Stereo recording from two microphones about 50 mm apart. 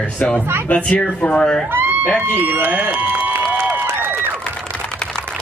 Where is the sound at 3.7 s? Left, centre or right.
Right.